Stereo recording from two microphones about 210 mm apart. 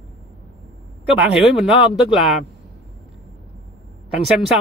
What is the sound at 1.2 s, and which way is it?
Speech, 5° right (ahead or behind).